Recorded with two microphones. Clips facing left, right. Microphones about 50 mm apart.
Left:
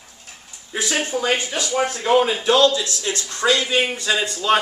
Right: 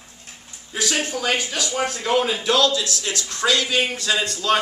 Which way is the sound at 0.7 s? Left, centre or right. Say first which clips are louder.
Left 1 dB; centre.